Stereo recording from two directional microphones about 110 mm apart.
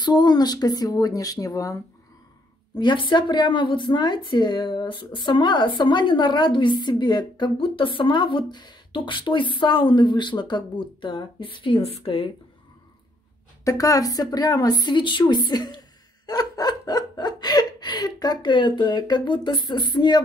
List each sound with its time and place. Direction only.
0.0 s speech: 40° left (ahead or behind)
2.7 s speech: 45° left (ahead or behind)
13.7 s speech: 30° left (ahead or behind)